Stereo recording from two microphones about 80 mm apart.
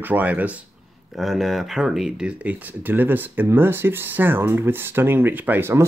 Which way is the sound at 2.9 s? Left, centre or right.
Right.